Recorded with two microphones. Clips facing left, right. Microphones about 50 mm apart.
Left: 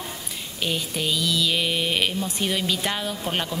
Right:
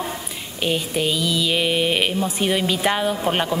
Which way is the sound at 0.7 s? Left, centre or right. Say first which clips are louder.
Right 5 dB; centre.